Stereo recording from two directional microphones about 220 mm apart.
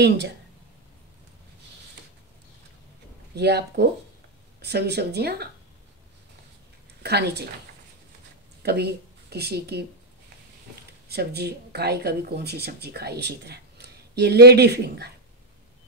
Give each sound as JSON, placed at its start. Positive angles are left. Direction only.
{"t": 3.3, "sound": "speech", "side_deg": -50}
{"t": 7.0, "sound": "speech", "side_deg": -50}
{"t": 8.6, "sound": "speech", "side_deg": -45}
{"t": 11.1, "sound": "speech", "side_deg": -45}